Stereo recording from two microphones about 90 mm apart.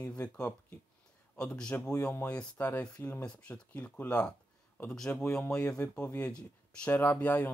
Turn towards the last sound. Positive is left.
turn(degrees=20)  # may be behind; listen again after turning